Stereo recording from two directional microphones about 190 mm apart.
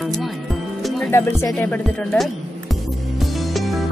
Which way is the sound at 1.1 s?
10° left (ahead or behind).